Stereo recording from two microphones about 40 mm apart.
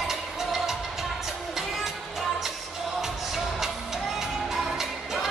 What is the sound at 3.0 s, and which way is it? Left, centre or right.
Music, centre.